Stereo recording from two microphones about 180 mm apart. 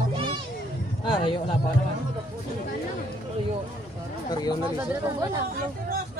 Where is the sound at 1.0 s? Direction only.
30° left (ahead or behind).